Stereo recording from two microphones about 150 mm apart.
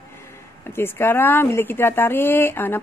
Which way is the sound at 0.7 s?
15° left (ahead or behind).